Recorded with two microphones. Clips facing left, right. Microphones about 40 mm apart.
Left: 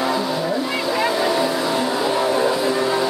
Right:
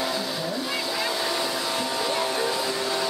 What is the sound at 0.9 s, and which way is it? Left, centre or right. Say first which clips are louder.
Vehicle: left 10 dB; left.